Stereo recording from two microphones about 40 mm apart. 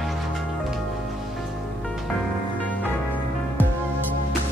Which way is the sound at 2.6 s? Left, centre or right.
Left.